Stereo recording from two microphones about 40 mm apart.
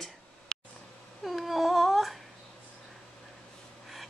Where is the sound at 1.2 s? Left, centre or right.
Centre.